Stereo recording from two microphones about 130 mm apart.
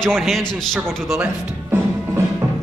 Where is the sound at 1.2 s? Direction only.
15° right (ahead or behind).